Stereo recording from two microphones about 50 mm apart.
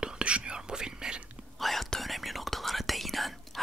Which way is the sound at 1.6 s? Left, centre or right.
Centre.